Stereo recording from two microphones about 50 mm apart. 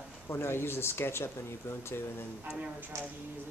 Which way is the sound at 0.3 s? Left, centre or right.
Left.